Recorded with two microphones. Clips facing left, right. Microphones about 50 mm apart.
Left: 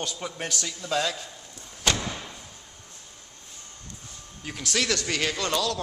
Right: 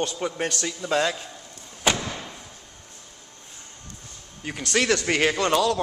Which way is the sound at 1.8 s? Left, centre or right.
Centre.